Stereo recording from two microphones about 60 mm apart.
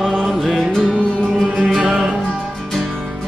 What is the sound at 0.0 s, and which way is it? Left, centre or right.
Music, centre.